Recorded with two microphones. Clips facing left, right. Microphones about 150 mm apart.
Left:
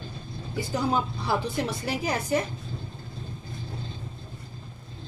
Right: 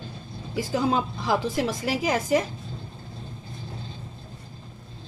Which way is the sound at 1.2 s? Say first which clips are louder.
Right 3 dB; 90° right.